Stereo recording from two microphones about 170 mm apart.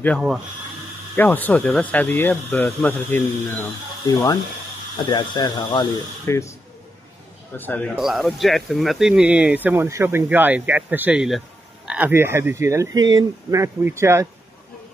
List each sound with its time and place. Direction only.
1.1 s speech: 10° left (ahead or behind)
4.9 s speech: 25° left (ahead or behind)
7.5 s speech: 10° left (ahead or behind)
7.9 s speech: centre (ahead or behind)